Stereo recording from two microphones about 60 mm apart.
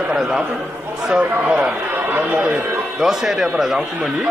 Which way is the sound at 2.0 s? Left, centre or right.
Right.